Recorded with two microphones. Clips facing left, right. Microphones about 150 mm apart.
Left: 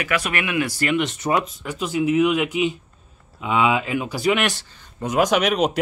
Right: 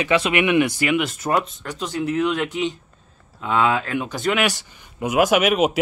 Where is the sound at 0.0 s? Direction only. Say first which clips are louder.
Right 5 dB; 25° right (ahead or behind).